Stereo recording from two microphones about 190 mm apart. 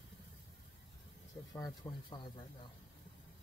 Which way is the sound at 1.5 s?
20° left (ahead or behind).